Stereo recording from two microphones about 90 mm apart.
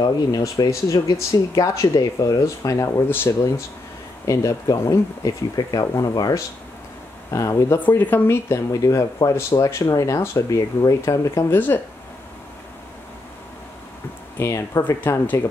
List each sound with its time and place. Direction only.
0.0 s speech: 45° left (ahead or behind)
7.8 s speech: 20° left (ahead or behind)
8.7 s speech: 40° left (ahead or behind); by 11.8 s 25° left (ahead or behind)
14.4 s speech: 30° left (ahead or behind)